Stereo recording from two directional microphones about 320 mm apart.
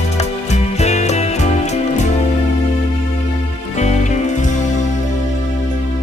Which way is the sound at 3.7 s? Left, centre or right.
Left.